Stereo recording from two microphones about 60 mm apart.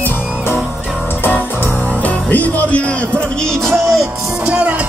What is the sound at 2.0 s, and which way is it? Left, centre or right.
Music, left.